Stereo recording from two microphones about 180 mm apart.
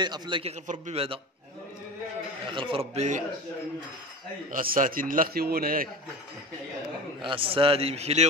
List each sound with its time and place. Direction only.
0.0 s a man's voice: 25° right (ahead or behind)
2.4 s a man's voice: 30° right (ahead or behind)
4.5 s a man's voice: 50° right (ahead or behind)
7.2 s a man's voice: 30° right (ahead or behind)